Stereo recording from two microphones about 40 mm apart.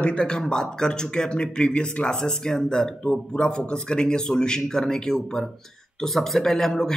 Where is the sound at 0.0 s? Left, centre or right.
Left.